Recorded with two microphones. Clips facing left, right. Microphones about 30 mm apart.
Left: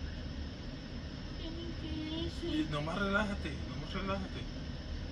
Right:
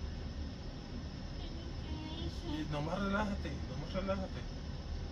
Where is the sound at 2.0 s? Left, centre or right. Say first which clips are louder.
Left 7 dB; left.